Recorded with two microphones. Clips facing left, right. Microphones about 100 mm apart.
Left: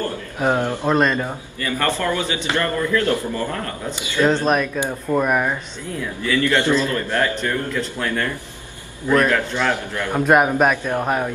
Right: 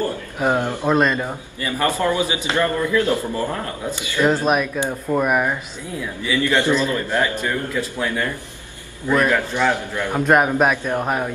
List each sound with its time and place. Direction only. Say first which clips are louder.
0.4 s speech: even; 5° right (ahead or behind)
1.6 s a man's voice: right 1 dB; 15° right (ahead or behind)
4.2 s a man's voice: even; 5° right (ahead or behind)
6.2 s a man's voice: even; 15° right (ahead or behind)
10.1 s speech: left 1 dB; centre (ahead or behind)